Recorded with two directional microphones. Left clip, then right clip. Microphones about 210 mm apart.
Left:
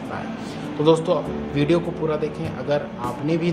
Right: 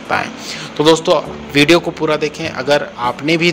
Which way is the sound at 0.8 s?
35° right (ahead or behind).